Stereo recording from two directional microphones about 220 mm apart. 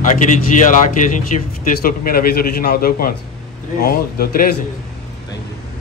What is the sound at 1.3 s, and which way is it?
A man's voice, 35° left (ahead or behind).